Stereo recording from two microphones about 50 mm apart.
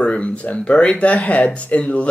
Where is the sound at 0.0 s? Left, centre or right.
Left.